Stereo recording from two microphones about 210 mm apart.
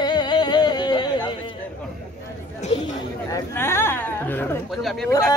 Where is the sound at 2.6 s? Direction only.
35° left (ahead or behind).